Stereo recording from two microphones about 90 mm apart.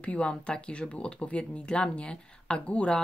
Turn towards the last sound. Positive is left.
turn(degrees=15)  # may be behind; listen again after turning